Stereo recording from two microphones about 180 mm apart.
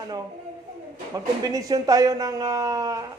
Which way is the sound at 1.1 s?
20° right (ahead or behind).